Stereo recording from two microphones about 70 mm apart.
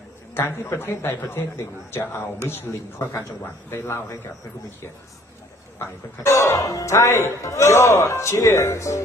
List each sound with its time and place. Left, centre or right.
0.3 s speech: left
6.2 s speech: left